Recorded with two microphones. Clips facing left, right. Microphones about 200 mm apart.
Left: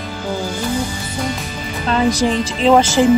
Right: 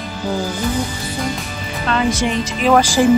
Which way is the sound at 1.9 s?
35° left (ahead or behind).